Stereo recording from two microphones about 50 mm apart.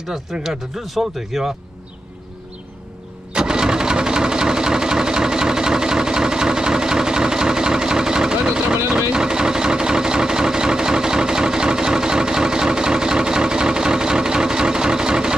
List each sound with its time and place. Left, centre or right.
0.0 s speech: centre
3.3 s sewing machine: centre
9.1 s vehicle: centre